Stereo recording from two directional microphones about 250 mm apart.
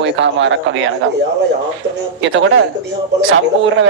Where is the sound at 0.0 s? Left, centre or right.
Right.